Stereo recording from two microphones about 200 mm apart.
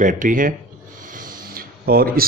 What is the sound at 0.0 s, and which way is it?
Speech, 40° right (ahead or behind).